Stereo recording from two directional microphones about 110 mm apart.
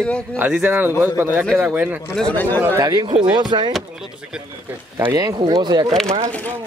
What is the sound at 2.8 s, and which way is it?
Speech, 35° right (ahead or behind).